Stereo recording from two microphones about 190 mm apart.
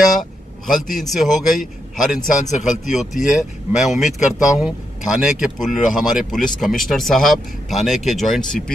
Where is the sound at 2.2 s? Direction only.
40° left (ahead or behind).